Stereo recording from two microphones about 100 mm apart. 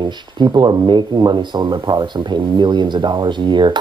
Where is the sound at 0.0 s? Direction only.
50° right (ahead or behind).